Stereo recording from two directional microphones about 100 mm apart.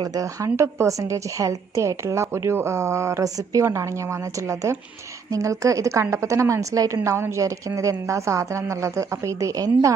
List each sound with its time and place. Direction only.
0.0 s a woman's voice: 35° right (ahead or behind)